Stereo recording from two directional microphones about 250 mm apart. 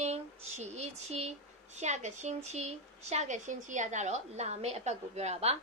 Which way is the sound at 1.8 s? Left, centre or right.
Right.